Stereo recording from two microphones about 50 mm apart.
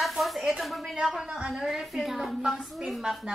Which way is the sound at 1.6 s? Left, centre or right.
Centre.